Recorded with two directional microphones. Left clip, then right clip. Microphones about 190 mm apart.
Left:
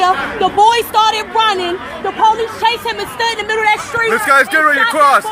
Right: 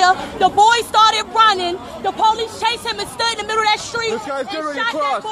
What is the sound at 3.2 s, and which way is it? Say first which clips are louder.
Speech: left 4 dB; 25° right (ahead or behind).